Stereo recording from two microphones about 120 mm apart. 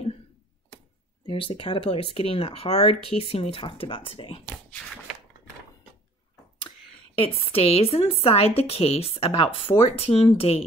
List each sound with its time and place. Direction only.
1.2 s speech: 45° left (ahead or behind)
7.2 s speech: 55° left (ahead or behind)